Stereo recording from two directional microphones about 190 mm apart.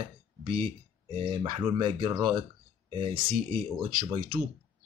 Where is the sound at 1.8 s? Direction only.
25° right (ahead or behind).